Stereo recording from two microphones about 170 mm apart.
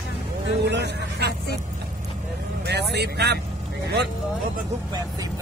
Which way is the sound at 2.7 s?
80° right.